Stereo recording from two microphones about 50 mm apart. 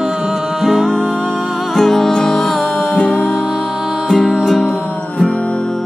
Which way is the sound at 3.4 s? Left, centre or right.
Centre.